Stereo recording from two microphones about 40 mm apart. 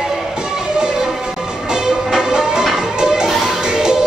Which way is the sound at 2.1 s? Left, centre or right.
Centre.